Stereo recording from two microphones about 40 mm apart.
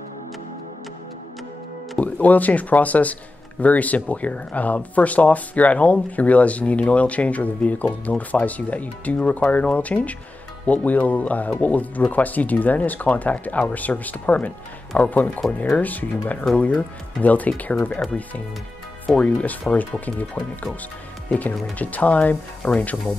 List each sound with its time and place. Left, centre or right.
2.0 s speech: left
19.2 s speech: left
21.3 s speech: left